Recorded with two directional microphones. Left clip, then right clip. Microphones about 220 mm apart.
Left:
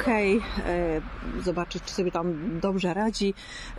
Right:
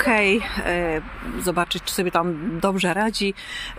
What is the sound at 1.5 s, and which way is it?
Speech, 15° right (ahead or behind).